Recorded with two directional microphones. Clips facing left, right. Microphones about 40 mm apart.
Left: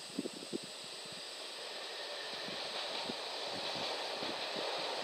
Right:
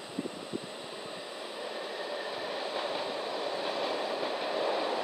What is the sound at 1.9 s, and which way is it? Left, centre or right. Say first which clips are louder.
Train: right 7 dB; right.